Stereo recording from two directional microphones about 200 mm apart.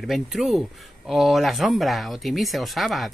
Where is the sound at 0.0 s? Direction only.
Centre (ahead or behind).